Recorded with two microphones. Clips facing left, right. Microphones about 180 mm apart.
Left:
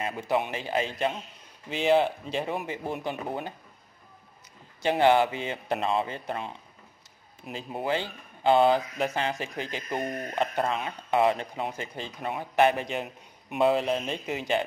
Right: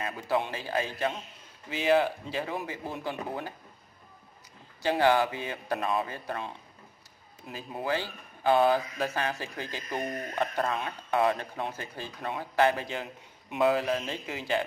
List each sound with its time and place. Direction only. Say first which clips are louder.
0.0 s speech: left 2 dB; 20° left (ahead or behind)
4.8 s speech: left 3 dB; 20° left (ahead or behind)